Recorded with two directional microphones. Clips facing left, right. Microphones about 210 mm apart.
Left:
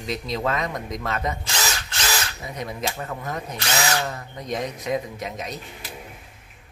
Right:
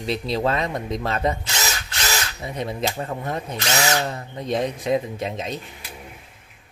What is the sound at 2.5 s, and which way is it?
Speech, 30° right (ahead or behind).